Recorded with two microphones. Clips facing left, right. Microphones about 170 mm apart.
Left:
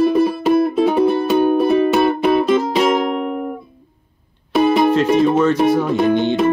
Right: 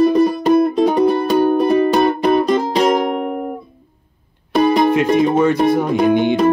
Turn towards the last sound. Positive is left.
turn(degrees=-10)  # may be behind; listen again after turning